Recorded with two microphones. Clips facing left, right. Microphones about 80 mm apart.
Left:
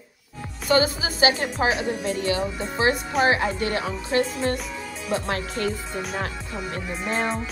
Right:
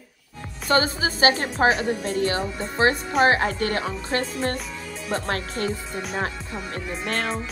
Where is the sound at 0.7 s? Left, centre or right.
Right.